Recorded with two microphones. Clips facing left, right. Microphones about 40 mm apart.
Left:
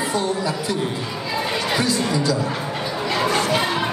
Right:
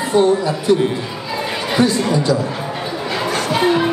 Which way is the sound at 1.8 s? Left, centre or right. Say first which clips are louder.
Right 9 dB; right.